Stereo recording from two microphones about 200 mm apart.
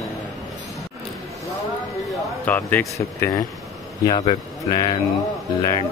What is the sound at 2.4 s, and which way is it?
Speech, 10° left (ahead or behind).